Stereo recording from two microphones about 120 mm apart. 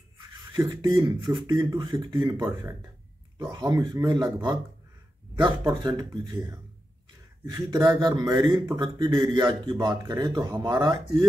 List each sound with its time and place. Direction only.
0.5 s speech: 35° right (ahead or behind)
3.5 s speech: 35° right (ahead or behind)
5.7 s speech: 35° right (ahead or behind)